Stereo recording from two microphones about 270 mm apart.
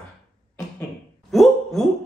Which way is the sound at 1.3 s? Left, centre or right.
Centre.